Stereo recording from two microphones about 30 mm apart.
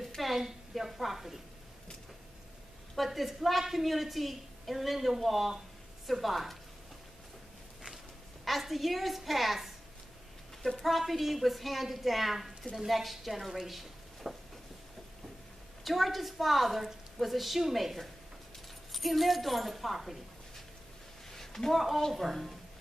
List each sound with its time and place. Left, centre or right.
0.2 s a woman's voice: centre
3.0 s a woman's voice: centre
8.5 s a woman's voice: centre
10.8 s a woman's voice: centre
15.8 s a woman's voice: centre
21.3 s a sound: centre
22.1 s a woman's voice: centre